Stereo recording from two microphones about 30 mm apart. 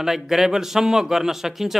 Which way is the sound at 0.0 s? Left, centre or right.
Centre.